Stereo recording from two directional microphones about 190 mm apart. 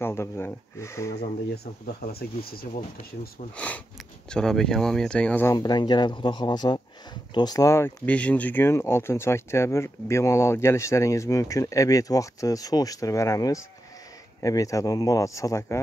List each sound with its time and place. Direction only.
0.0 s speech: 10° left (ahead or behind)
1.1 s speech: 55° left (ahead or behind)
3.5 s speech: 5° left (ahead or behind)